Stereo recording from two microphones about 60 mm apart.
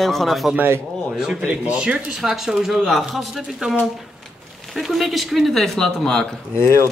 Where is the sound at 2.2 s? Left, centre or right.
Centre.